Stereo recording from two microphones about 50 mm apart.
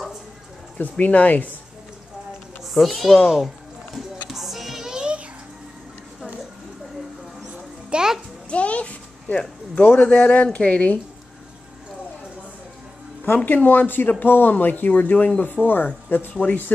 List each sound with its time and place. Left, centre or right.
0.7 s speech: left
2.7 s a child's voice: centre
3.3 s music: centre
7.9 s music: centre
8.5 s a sound: left
9.8 s speech: left
10.0 s speech: centre
13.5 s speech: left